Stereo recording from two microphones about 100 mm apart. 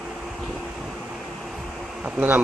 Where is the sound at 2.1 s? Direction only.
15° right (ahead or behind).